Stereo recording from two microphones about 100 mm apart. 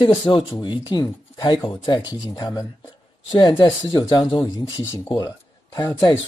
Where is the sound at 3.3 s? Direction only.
50° left (ahead or behind).